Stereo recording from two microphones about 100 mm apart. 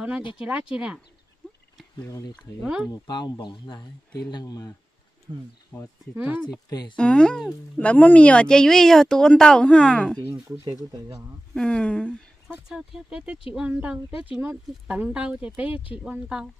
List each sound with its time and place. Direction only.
0.4 s speech: 10° right (ahead or behind)
2.6 s speech: 5° right (ahead or behind)
2.9 s speech: 45° left (ahead or behind)
6.1 s speech: 15° right (ahead or behind)
6.7 s speech: 45° left (ahead or behind)
7.0 s a woman's voice: 10° left (ahead or behind)
11.5 s speech: 10° left (ahead or behind)
12.6 s speech: 5° right (ahead or behind)